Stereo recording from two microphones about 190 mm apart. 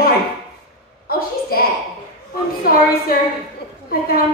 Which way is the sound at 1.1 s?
50° left (ahead or behind).